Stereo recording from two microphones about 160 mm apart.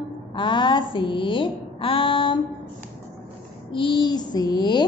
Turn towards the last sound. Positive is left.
turn(degrees=25)  # may be behind; listen again after turning